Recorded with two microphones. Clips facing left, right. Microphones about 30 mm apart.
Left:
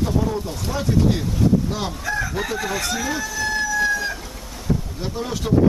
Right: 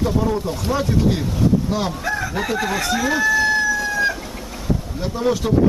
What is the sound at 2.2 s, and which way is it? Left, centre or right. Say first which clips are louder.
Speech: right 3 dB; centre.